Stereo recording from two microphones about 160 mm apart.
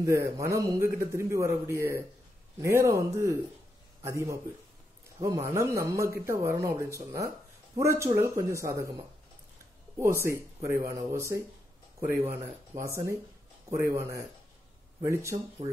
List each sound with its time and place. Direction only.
0.0 s speech: 20° right (ahead or behind)
10.1 s speech: 15° right (ahead or behind)